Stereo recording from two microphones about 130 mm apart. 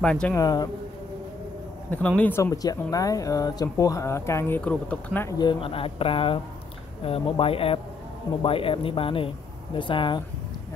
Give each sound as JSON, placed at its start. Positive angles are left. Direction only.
{"t": 0.0, "sound": "a man's voice", "side_deg": 5}
{"t": 0.3, "sound": "speech", "side_deg": 30}
{"t": 1.9, "sound": "speech", "side_deg": 10}
{"t": 5.4, "sound": "speech", "side_deg": 40}